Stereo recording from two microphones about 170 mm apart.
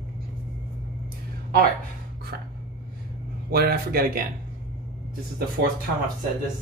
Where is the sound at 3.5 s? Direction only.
65° right (ahead or behind).